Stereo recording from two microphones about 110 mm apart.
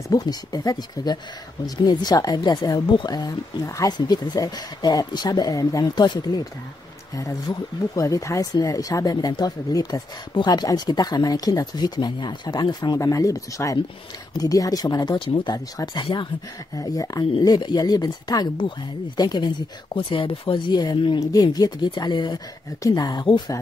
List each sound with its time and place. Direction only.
0.1 s speech: 35° left (ahead or behind)
15.1 s speech: 50° left (ahead or behind)